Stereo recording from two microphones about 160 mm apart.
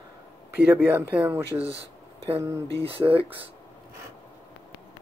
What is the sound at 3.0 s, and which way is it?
Speech, 20° right (ahead or behind).